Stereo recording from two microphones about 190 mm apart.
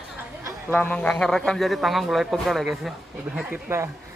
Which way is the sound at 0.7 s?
10° left (ahead or behind).